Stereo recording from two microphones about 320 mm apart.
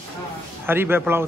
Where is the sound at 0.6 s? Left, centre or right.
Centre.